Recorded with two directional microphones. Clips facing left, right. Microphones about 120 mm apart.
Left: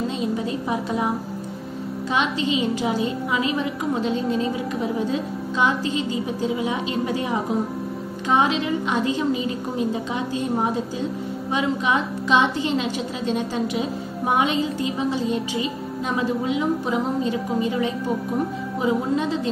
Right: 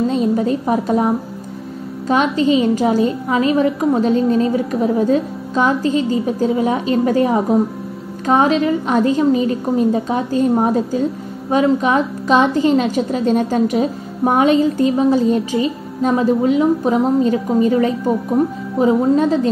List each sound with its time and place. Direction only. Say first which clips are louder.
0.1 s a woman's voice: right 8 dB; 45° right (ahead or behind)
2.0 s a woman's voice: right 8 dB; 45° right (ahead or behind)